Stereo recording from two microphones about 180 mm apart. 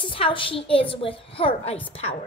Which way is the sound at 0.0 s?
30° left (ahead or behind).